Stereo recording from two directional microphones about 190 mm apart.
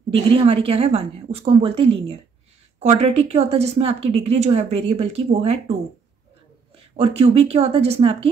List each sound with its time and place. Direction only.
0.1 s a woman's voice: 30° right (ahead or behind)
7.0 s a woman's voice: 30° right (ahead or behind)